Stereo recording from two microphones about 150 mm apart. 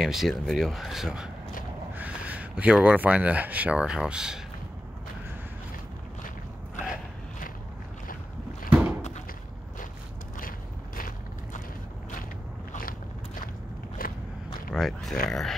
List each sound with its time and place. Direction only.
0.0 s speech: centre (ahead or behind)
8.6 s a sound: 10° right (ahead or behind)
11.0 s walk: 65° left (ahead or behind)
14.0 s walk: 70° left (ahead or behind)
14.7 s speech: centre (ahead or behind)